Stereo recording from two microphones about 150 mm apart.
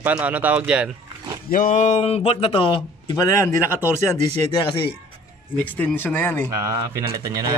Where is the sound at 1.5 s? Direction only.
60° left (ahead or behind); by 3.5 s 25° left (ahead or behind).